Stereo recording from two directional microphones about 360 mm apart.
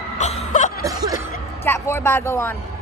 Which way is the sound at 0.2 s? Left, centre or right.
Centre.